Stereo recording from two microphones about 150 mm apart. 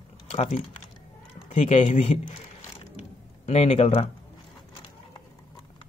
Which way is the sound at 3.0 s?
45° left (ahead or behind).